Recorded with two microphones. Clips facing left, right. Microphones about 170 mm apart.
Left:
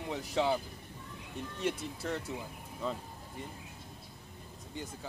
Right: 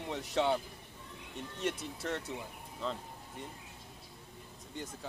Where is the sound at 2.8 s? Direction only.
10° left (ahead or behind).